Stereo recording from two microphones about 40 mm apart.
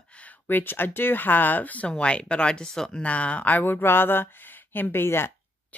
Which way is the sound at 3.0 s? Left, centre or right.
Left.